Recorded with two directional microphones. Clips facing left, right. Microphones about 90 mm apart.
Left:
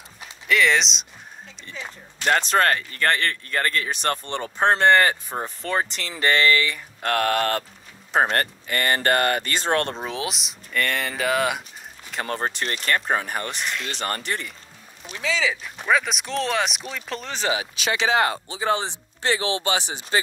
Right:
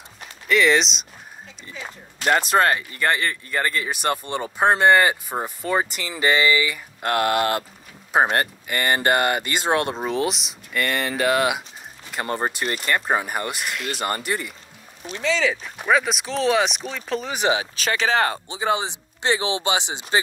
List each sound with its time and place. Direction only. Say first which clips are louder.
0.5 s speech: right 2 dB; centre (ahead or behind)
17.3 s speech: right 3 dB; 15° right (ahead or behind)
17.6 s speech: right 1 dB; 40° right (ahead or behind)
18.5 s speech: right 1 dB; 15° right (ahead or behind)